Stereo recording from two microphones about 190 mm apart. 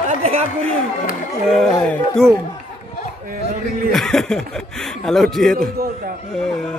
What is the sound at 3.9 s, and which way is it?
Speech, centre (ahead or behind).